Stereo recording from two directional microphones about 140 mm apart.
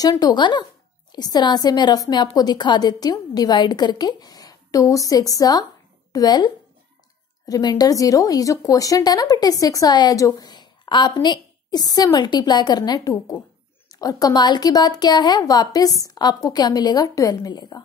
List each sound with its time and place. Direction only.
0.0 s speech: 30° left (ahead or behind)